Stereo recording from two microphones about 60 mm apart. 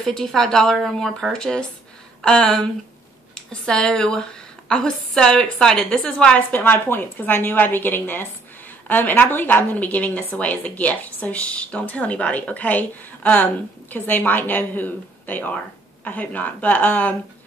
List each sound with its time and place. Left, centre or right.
0.0 s a woman's voice: centre
6.5 s a woman's voice: left